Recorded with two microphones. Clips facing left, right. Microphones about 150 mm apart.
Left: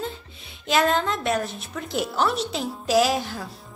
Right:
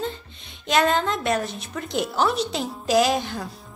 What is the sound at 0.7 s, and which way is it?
A woman's voice, centre (ahead or behind).